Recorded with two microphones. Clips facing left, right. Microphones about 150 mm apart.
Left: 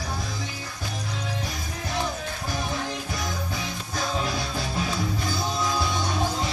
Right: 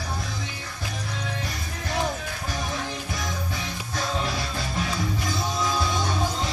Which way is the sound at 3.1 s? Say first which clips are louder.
Left 1 dB; centre (ahead or behind).